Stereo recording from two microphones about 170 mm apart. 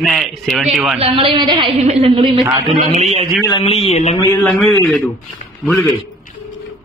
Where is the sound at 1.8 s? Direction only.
40° right (ahead or behind).